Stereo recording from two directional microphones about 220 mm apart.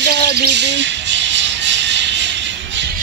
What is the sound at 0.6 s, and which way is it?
Music, 55° right (ahead or behind).